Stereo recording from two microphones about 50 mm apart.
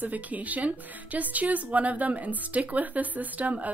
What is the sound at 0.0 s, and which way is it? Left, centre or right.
Speech, right.